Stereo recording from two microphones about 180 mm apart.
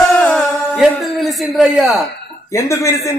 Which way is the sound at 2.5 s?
15° left (ahead or behind).